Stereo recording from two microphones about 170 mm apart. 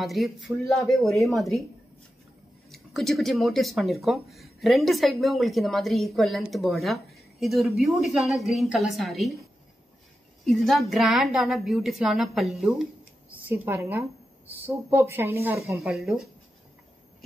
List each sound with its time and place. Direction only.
0.0 s speech: centre (ahead or behind)
2.7 s speech: centre (ahead or behind)
10.4 s speech: centre (ahead or behind)
13.5 s speech: 10° right (ahead or behind)
15.8 s speech: centre (ahead or behind)